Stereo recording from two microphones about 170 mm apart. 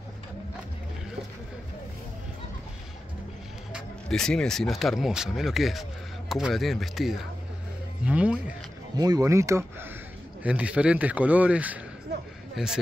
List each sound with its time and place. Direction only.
3.7 s speech: 5° left (ahead or behind)
8.9 s speech: 20° right (ahead or behind); by 12.7 s centre (ahead or behind)